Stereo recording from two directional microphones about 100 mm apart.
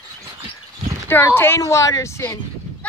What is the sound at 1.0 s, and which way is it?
A woman's voice, 25° left (ahead or behind).